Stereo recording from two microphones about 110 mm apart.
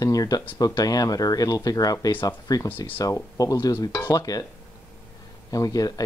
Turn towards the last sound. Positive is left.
turn(degrees=35)  # may be behind; listen again after turning